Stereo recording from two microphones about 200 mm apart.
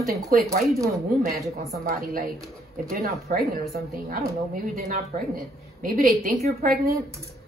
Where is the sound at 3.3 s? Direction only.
40° right (ahead or behind).